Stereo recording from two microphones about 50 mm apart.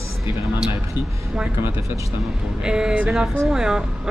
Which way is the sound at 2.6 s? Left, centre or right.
Centre.